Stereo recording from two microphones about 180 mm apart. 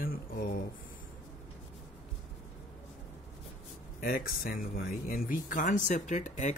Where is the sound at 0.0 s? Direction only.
60° left (ahead or behind).